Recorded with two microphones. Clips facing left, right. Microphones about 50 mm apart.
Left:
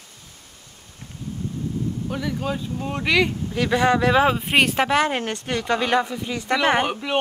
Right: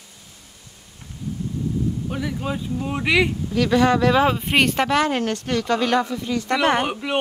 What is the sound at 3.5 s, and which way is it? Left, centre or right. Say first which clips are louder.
Speech: right 2 dB; left.